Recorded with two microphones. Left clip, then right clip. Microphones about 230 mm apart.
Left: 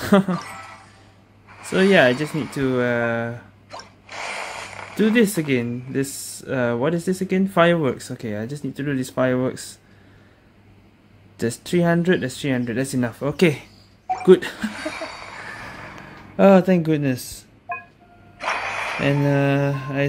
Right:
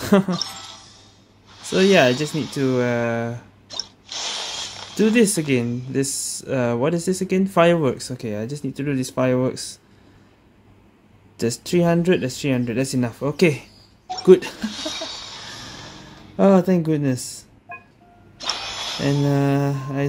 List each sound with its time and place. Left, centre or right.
0.0 s speech: centre
1.7 s speech: centre
4.9 s speech: centre
11.3 s speech: centre
16.3 s speech: centre
18.5 s a sound: right
19.0 s speech: centre